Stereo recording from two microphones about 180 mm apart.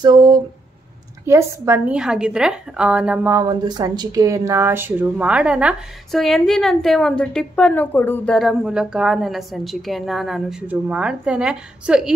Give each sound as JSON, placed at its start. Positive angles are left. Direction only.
{"t": 0.0, "sound": "speech", "side_deg": -20}
{"t": 3.4, "sound": "speech", "side_deg": -20}
{"t": 8.4, "sound": "speech", "side_deg": 0}